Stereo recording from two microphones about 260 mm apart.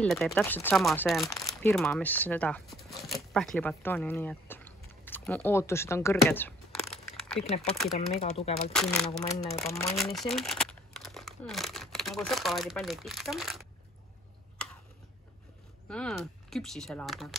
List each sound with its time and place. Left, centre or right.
0.0 s speech: centre
8.2 s speech: left
8.7 s speech: centre
15.9 s speech: centre